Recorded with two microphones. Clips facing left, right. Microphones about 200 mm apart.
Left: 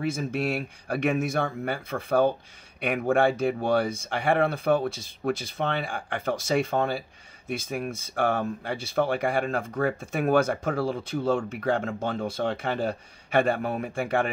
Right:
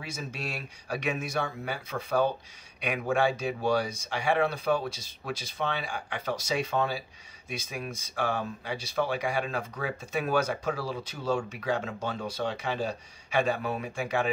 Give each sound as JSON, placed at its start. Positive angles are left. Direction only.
{"t": 0.0, "sound": "speech", "side_deg": 55}